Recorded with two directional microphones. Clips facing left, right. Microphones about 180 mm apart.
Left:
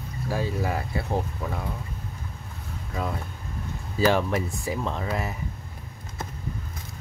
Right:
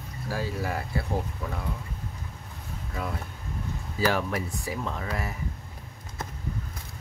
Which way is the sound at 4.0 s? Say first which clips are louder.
Left 4 dB; 25° left (ahead or behind).